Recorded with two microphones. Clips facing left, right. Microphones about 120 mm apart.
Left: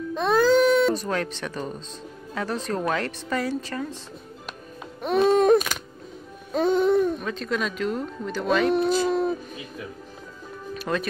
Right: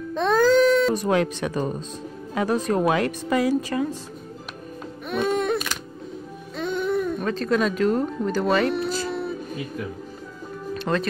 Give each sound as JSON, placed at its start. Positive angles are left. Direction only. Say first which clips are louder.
{"t": 0.1, "sound": "baby cry", "louder": "right 1 dB", "side_deg": 5}
{"t": 0.9, "sound": "a woman's voice", "louder": "right 6 dB", "side_deg": -15}
{"t": 5.0, "sound": "music", "louder": "left 5 dB", "side_deg": 35}
{"t": 7.2, "sound": "a sound", "louder": "right 5 dB", "side_deg": 0}
{"t": 7.5, "sound": "speech", "louder": "right 6 dB", "side_deg": 0}
{"t": 9.1, "sound": "a sound", "louder": "left 5 dB", "side_deg": 40}
{"t": 10.7, "sound": "music", "louder": "right 3 dB", "side_deg": 5}